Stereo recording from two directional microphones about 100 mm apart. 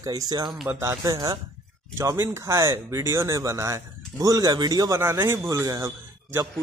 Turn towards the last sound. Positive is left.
turn(degrees=-30)  # may be behind; listen again after turning